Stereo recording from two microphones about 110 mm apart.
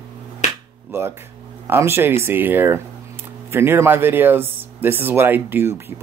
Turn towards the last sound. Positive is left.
turn(degrees=-20)  # may be behind; listen again after turning